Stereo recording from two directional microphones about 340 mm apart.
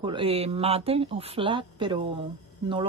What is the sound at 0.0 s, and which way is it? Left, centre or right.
Speech, centre.